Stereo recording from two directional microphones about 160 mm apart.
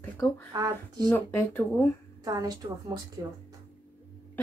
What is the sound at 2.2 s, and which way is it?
Speech, 25° right (ahead or behind).